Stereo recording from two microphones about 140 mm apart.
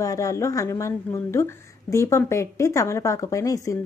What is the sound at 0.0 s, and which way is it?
A woman's voice, 25° left (ahead or behind).